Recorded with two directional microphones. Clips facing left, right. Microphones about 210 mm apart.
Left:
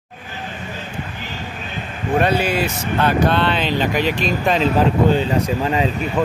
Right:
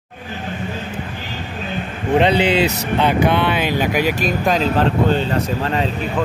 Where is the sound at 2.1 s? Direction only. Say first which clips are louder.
Right 3 dB; 20° right (ahead or behind).